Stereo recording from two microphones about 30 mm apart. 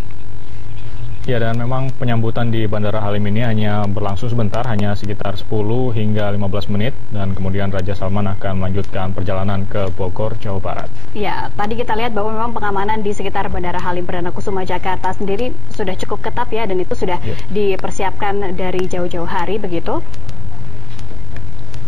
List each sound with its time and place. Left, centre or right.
1.3 s speech: left
1.6 s speech: centre